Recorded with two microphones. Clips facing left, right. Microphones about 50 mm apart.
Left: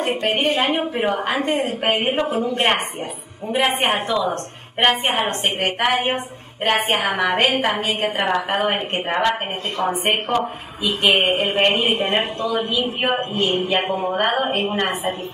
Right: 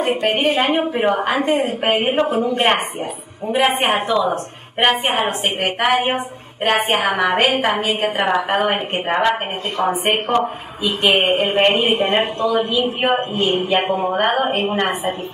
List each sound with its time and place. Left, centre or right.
0.0 s a woman's voice: centre